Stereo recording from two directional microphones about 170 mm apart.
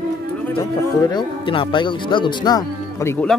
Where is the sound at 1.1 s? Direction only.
25° left (ahead or behind).